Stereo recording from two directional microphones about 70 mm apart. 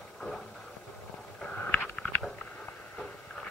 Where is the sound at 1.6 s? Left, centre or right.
Centre.